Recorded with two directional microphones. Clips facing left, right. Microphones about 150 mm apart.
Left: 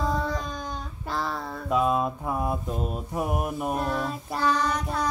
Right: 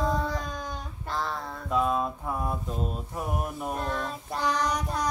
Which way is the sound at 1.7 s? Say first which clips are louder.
Left 3 dB; 15° left (ahead or behind).